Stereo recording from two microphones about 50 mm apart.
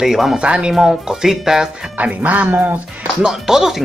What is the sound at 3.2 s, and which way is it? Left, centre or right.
Speech, centre.